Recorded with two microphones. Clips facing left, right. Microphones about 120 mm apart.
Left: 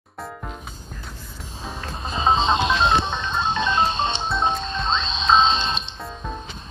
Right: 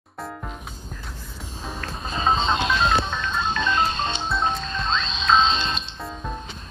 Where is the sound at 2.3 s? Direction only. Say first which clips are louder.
Left 4 dB; 25° left (ahead or behind).